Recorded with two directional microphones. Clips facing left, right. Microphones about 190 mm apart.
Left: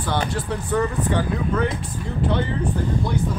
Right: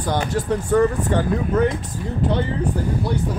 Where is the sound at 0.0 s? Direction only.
40° right (ahead or behind).